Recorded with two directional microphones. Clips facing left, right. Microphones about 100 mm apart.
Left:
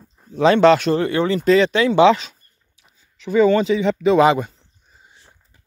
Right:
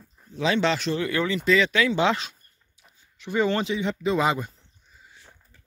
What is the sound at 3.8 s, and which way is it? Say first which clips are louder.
Speech: left 9 dB; 90° left.